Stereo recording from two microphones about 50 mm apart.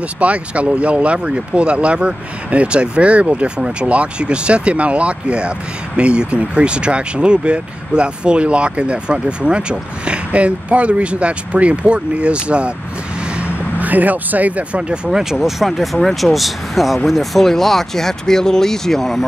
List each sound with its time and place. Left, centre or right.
0.2 s speech: right
13.4 s speech: right; by 19.2 s centre